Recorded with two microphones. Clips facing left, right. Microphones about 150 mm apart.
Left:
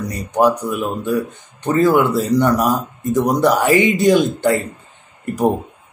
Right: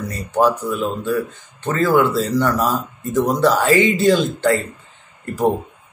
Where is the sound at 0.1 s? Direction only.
15° left (ahead or behind).